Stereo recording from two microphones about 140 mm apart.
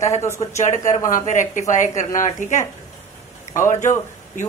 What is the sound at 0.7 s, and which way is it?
Speech, 60° left (ahead or behind).